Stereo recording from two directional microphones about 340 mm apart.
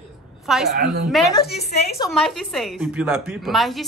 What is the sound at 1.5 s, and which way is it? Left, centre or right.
Speech, left.